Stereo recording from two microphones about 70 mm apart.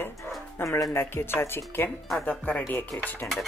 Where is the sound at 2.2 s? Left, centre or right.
Centre.